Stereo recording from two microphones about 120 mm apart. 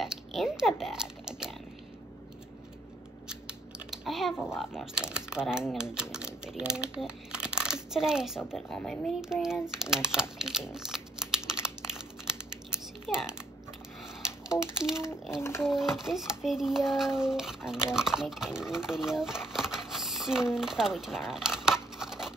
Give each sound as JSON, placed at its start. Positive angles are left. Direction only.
{"t": 0.0, "sound": "a sound", "side_deg": 0}
{"t": 3.3, "sound": "scissors", "side_deg": -5}
{"t": 4.6, "sound": "a child's voice", "side_deg": -5}
{"t": 10.7, "sound": "crumpling", "side_deg": -5}
{"t": 13.1, "sound": "a child's voice", "side_deg": -5}
{"t": 14.8, "sound": "a child's voice", "side_deg": -5}
{"t": 15.3, "sound": "a child's voice", "side_deg": 20}
{"t": 15.6, "sound": "a child's voice", "side_deg": -5}